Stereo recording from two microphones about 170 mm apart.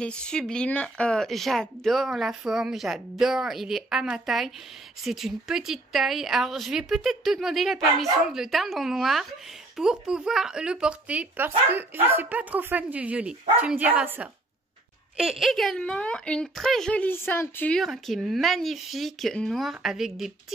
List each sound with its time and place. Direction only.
0.0 s speech: 5° left (ahead or behind)